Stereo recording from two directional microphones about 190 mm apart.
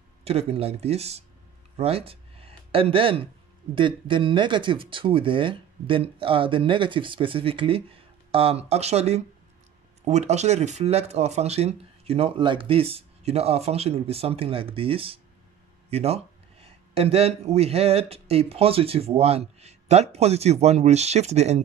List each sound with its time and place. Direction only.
0.2 s speech: 30° right (ahead or behind)